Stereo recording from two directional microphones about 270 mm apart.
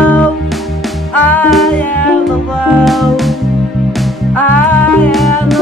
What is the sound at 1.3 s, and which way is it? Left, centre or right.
Music, centre.